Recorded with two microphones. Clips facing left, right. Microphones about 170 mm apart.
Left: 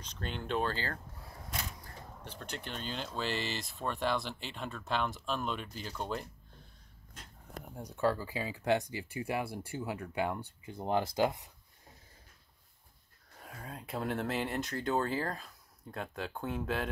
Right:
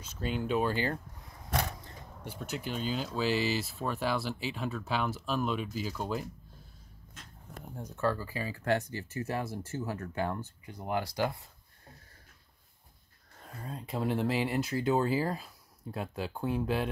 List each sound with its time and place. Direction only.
0.0 s speech: 5° right (ahead or behind)
2.2 s speech: 10° right (ahead or behind)
7.7 s speech: 15° left (ahead or behind)
10.6 s speech: 25° left (ahead or behind)
13.4 s speech: centre (ahead or behind)